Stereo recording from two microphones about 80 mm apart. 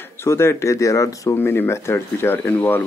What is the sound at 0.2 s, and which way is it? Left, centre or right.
Speech, left.